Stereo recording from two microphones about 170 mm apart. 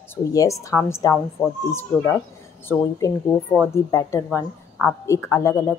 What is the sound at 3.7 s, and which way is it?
A woman's voice, 15° left (ahead or behind).